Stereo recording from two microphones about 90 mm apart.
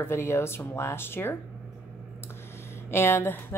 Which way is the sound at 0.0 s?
30° left (ahead or behind).